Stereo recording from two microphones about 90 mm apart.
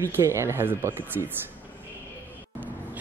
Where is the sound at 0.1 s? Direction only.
30° right (ahead or behind).